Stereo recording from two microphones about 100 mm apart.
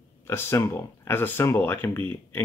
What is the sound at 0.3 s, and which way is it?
Speech, 25° left (ahead or behind).